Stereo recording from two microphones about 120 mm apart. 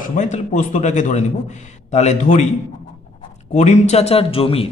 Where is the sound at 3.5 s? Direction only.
70° left (ahead or behind); by 4.6 s 50° left (ahead or behind).